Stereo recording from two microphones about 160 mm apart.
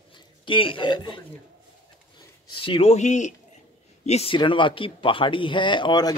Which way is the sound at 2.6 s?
35° left (ahead or behind).